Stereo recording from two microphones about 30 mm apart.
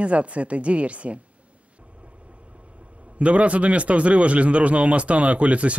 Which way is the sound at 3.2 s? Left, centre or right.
Right.